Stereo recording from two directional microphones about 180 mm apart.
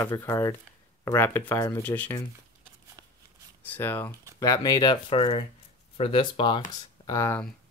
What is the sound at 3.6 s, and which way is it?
Speech, 10° left (ahead or behind).